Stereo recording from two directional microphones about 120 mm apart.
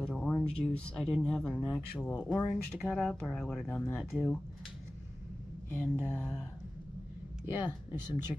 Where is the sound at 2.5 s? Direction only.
5° left (ahead or behind).